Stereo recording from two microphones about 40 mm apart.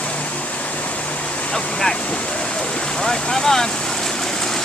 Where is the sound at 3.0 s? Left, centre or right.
Centre.